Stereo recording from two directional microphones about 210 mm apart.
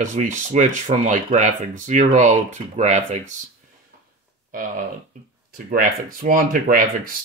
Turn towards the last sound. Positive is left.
turn(degrees=-40)  # may be behind; listen again after turning